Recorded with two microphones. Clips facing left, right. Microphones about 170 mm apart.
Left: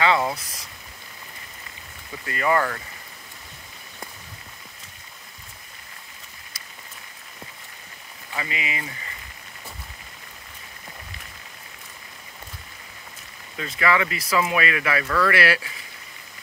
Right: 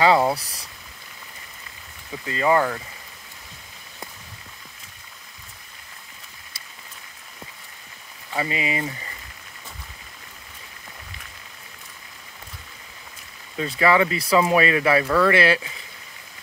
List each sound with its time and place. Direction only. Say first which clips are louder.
0.0 s speech: right 4 dB; 35° right (ahead or behind)
2.2 s speech: right 2 dB; 20° right (ahead or behind)
8.4 s speech: right 6 dB; 35° right (ahead or behind)
13.6 s speech: right 4 dB; 30° right (ahead or behind)